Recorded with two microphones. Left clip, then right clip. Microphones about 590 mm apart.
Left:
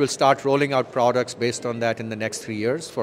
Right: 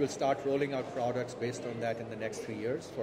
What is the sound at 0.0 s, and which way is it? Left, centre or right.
Speech, left.